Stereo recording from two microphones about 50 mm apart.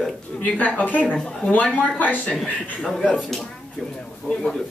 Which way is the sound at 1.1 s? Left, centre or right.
Centre.